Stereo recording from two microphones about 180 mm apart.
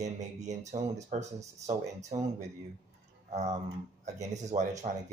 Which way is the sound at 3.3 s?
40° right (ahead or behind).